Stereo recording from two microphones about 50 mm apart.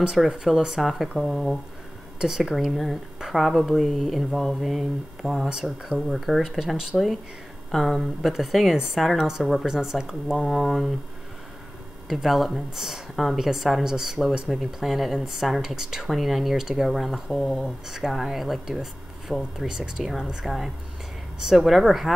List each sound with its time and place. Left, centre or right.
0.2 s a woman's voice: centre
5.5 s speech: centre
5.9 s speech: centre
9.7 s speech: centre
12.1 s speech: centre
17.6 s speech: centre